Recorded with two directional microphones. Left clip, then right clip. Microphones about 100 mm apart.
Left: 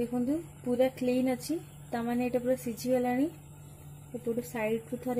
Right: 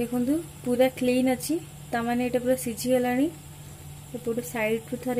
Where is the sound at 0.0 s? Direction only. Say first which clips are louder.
Right 5 dB; 20° left (ahead or behind).